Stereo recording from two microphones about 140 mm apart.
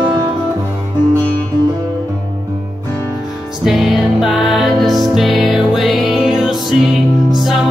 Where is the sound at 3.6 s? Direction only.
Centre (ahead or behind).